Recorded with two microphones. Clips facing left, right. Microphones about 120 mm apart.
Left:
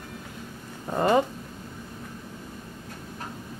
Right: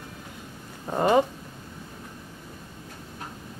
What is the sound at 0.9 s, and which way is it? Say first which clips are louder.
Speech: right 1 dB; 10° right (ahead or behind).